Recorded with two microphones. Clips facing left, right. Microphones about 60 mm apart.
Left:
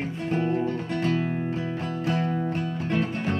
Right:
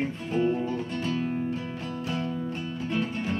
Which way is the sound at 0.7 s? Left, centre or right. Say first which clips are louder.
Left 4 dB; left.